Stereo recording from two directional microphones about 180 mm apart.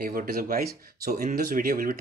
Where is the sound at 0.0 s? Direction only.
55° right (ahead or behind).